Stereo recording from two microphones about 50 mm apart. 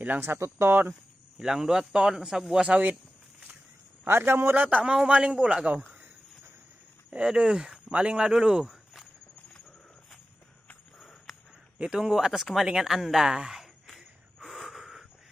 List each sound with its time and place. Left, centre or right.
0.3 s a man's voice: right
1.4 s speech: centre
4.0 s a man's voice: right
4.6 s a man's voice: right
4.8 s a man's voice: centre
7.1 s speech: centre
11.0 s a sound: centre
11.8 s speech: centre
13.9 s a sound: centre